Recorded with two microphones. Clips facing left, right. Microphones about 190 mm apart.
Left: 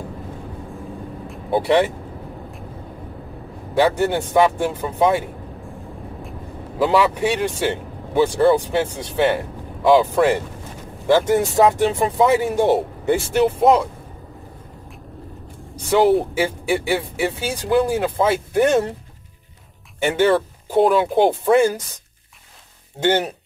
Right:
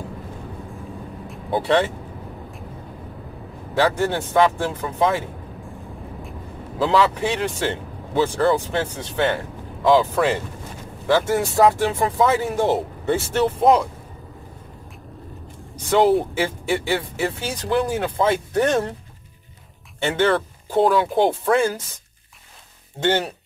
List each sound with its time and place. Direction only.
0.7 s vehicle: centre (ahead or behind)
1.6 s speech: 10° left (ahead or behind)
3.7 s speech: 15° left (ahead or behind)
6.8 s speech: 15° left (ahead or behind)
15.7 s speech: 10° left (ahead or behind)
20.0 s speech: 10° left (ahead or behind)
23.0 s speech: 20° left (ahead or behind)